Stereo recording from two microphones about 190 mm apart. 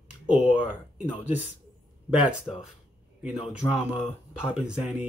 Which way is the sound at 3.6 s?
15° left (ahead or behind).